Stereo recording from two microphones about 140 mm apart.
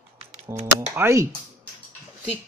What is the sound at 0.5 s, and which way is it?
Speech, 20° right (ahead or behind).